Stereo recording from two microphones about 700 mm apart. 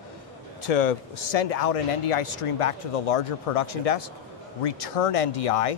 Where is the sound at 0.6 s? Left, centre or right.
Left.